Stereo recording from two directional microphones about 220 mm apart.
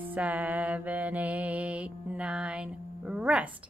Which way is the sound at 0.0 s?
5° right (ahead or behind).